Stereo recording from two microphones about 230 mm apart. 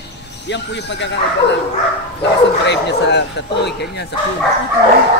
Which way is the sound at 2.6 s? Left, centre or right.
Left.